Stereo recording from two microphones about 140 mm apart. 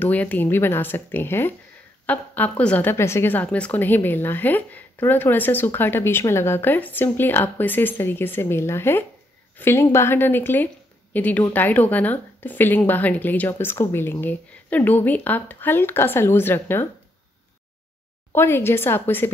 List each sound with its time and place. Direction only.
0.0 s a woman's voice: 10° left (ahead or behind)
18.3 s a woman's voice: 15° left (ahead or behind)